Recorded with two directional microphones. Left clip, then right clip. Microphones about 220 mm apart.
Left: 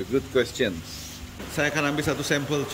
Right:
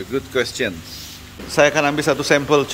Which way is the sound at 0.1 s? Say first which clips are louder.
Right 3 dB; 5° left (ahead or behind).